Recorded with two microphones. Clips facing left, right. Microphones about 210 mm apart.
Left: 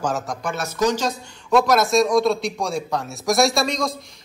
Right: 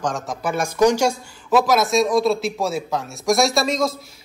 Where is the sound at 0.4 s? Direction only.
10° right (ahead or behind).